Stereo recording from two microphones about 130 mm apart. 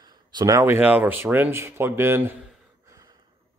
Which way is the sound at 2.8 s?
25° right (ahead or behind).